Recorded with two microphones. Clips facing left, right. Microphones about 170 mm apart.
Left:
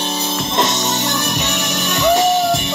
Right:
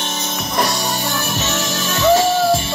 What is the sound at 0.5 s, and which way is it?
Music, 20° left (ahead or behind).